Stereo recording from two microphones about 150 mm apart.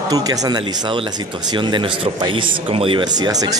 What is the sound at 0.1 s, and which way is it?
A man's voice, 25° right (ahead or behind).